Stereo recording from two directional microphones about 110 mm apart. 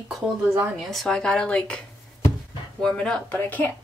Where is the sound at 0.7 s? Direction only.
Centre (ahead or behind).